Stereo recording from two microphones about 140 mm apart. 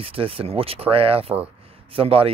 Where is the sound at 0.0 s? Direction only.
40° right (ahead or behind).